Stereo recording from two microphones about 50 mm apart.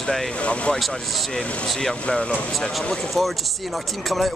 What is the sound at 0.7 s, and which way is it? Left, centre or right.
Speech, centre.